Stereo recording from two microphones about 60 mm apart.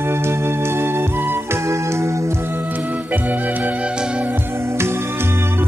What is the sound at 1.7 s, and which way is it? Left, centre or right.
Music, right.